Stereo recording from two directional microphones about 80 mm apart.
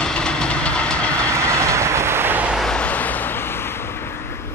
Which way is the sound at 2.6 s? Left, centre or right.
Centre.